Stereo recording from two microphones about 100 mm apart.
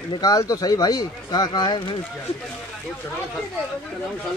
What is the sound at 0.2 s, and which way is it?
Speech, 40° left (ahead or behind).